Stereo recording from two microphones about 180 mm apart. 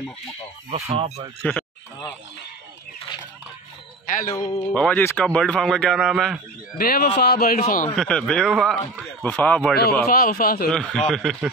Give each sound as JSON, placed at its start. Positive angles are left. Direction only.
{"t": 0.7, "sound": "speech", "side_deg": -35}
{"t": 1.4, "sound": "speech", "side_deg": 5}
{"t": 4.0, "sound": "a sound", "side_deg": 45}
{"t": 4.3, "sound": "speech", "side_deg": 20}
{"t": 4.7, "sound": "a man's voice", "side_deg": 5}
{"t": 6.8, "sound": "speech", "side_deg": 55}
{"t": 7.6, "sound": "a man's voice", "side_deg": 45}
{"t": 7.9, "sound": "a man's voice", "side_deg": 5}
{"t": 10.0, "sound": "speech", "side_deg": 55}
{"t": 10.7, "sound": "a man's voice", "side_deg": 5}